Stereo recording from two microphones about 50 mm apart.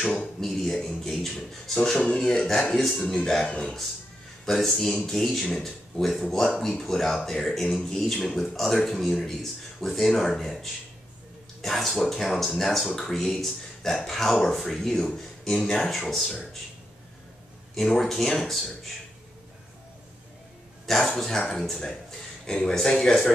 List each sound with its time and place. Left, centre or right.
0.0 s speech: left
0.4 s speech: centre
2.7 s speech: centre
3.0 s speech: centre
4.5 s speech: centre
17.7 s speech: centre
20.8 s speech: centre